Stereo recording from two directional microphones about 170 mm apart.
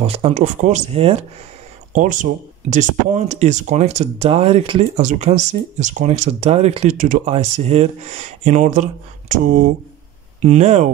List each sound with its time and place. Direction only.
0.0 s speech: 35° right (ahead or behind)